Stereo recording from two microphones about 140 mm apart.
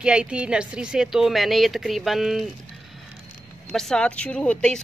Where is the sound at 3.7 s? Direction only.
5° left (ahead or behind).